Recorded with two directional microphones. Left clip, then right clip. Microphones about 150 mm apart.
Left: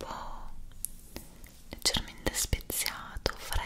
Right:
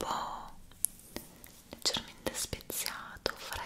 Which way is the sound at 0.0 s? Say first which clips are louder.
Right 5 dB; 25° right (ahead or behind).